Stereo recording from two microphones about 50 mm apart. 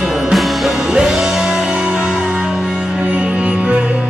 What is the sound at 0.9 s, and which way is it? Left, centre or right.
Music, centre.